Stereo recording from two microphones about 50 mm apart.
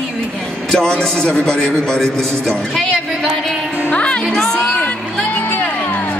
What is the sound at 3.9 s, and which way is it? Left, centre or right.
Speech, left.